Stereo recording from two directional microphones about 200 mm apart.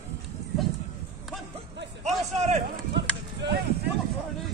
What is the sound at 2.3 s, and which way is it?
Run, 35° right (ahead or behind).